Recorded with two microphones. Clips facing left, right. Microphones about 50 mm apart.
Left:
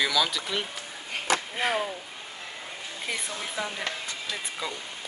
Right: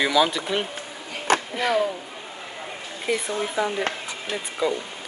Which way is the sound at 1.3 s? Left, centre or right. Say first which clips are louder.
Right 5 dB; right.